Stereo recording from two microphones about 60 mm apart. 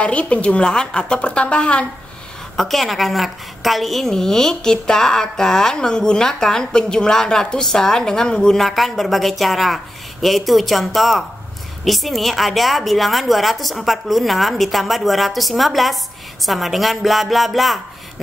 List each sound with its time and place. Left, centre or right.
0.0 s a woman's voice: centre
2.5 s a woman's voice: centre